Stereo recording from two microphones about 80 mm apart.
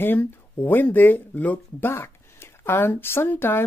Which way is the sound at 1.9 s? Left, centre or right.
Left.